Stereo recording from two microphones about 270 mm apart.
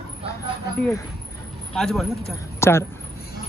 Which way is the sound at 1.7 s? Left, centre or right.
Centre.